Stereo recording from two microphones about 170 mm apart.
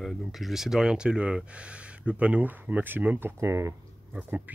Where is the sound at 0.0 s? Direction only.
Centre (ahead or behind).